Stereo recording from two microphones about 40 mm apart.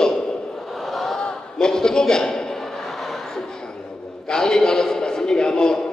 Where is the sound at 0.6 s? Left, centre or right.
Centre.